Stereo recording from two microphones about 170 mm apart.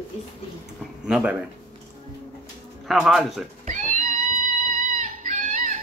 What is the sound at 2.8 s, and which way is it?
Speech, centre (ahead or behind).